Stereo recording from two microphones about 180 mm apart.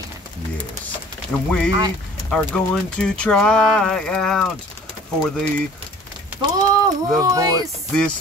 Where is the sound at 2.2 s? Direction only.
5° left (ahead or behind).